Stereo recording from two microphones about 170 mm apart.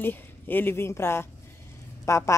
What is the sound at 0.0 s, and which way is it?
Speech, 10° left (ahead or behind).